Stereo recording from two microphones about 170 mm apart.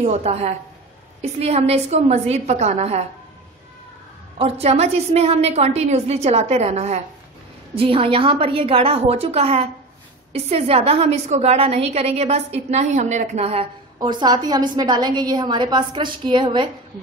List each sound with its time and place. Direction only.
0.0 s a woman's voice: 40° right (ahead or behind)
4.4 s a woman's voice: 40° right (ahead or behind)
13.9 s a woman's voice: 25° right (ahead or behind)